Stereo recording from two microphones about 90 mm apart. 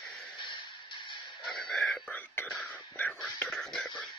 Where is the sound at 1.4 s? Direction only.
Centre (ahead or behind).